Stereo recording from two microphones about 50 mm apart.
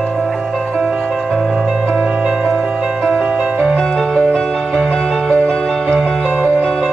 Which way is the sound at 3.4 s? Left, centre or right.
Centre.